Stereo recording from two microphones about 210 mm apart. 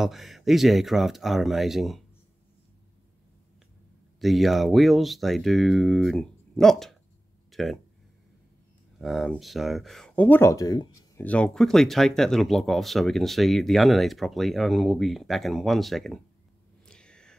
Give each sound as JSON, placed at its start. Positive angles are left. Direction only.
{"t": 0.0, "sound": "speech", "side_deg": 0}
{"t": 4.2, "sound": "speech", "side_deg": 0}
{"t": 8.9, "sound": "speech", "side_deg": 0}
{"t": 16.8, "sound": "whispering", "side_deg": 5}